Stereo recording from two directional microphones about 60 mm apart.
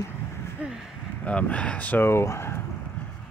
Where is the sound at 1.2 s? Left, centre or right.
Left.